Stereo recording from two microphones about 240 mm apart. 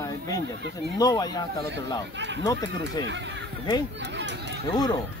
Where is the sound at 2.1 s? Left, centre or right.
Right.